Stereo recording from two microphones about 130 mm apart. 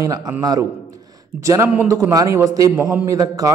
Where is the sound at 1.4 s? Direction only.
20° right (ahead or behind).